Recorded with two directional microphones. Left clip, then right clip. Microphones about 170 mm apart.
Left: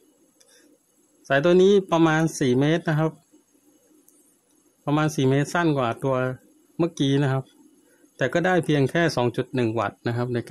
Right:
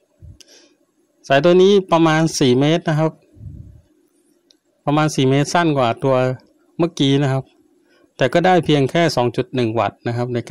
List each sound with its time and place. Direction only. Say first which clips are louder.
1.2 s speech: right 6 dB; 20° right (ahead or behind)
4.8 s speech: right 6 dB; 20° right (ahead or behind)